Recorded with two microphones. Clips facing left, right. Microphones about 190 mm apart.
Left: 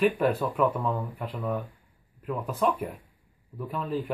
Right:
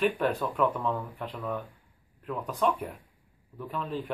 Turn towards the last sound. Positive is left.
turn(degrees=5)  # may be behind; listen again after turning